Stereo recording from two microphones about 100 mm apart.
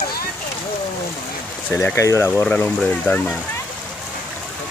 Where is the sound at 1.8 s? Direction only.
30° left (ahead or behind).